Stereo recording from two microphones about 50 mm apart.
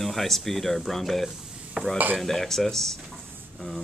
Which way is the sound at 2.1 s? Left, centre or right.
Centre.